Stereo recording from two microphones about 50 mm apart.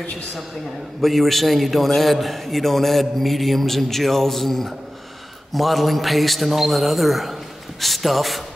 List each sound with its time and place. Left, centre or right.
1.0 s a man's voice: centre